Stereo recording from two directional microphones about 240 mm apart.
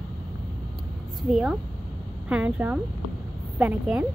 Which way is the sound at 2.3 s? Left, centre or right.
Centre.